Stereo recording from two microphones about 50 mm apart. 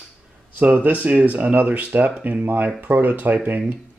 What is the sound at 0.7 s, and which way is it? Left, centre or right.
Speech, right.